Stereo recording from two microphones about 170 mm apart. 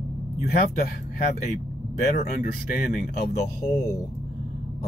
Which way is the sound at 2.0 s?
40° left (ahead or behind).